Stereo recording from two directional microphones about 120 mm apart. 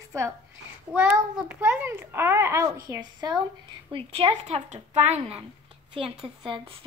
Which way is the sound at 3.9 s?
50° right (ahead or behind).